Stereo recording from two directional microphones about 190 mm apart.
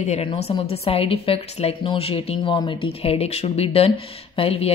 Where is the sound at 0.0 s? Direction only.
35° left (ahead or behind).